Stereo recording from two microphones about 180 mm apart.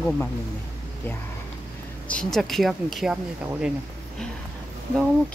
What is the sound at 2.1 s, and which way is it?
Speech, 5° left (ahead or behind).